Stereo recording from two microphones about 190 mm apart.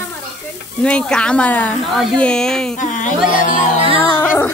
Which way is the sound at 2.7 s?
40° left (ahead or behind).